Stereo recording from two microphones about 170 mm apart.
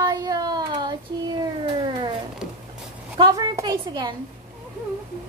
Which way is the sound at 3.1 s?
25° right (ahead or behind).